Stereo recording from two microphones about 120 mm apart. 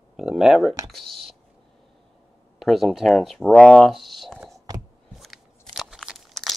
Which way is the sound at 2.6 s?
Centre (ahead or behind).